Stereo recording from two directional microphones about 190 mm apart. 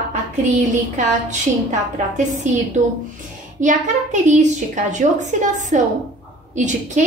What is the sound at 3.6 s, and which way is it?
A woman's voice, 40° right (ahead or behind).